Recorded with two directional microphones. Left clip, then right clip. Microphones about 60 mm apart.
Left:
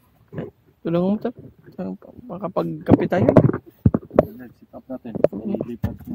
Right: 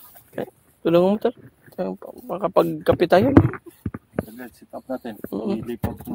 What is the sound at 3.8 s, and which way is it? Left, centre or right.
Clip-clop, centre.